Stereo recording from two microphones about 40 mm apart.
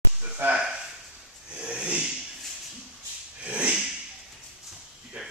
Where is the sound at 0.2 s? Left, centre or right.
Right.